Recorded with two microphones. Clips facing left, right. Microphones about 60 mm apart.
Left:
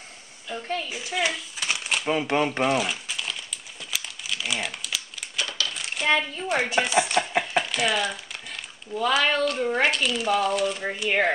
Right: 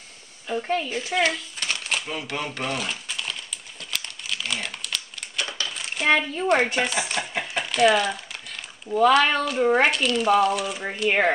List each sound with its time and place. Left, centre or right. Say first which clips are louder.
0.6 s speech: right 5 dB; centre
0.8 s a sound: right 4 dB; centre
2.0 s speech: left 7 dB; left; by 3.3 s centre
3.9 s crumpling: even; centre
5.7 s coin: right 3 dB; centre
6.7 s a sound: left 3 dB; centre
8.9 s speech: right 5 dB; centre